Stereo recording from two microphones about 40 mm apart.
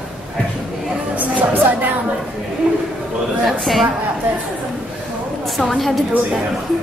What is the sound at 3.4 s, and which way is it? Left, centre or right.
Speech, centre.